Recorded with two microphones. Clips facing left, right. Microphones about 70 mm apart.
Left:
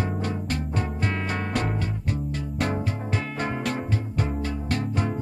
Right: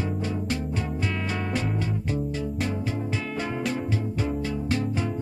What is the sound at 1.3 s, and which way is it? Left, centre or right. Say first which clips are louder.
Music: left 1 dB; left.